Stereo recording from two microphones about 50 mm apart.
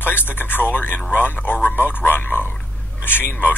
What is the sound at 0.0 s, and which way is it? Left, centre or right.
A man's voice, left.